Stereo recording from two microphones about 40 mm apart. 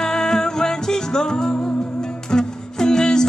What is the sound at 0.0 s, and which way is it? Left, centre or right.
Music, centre.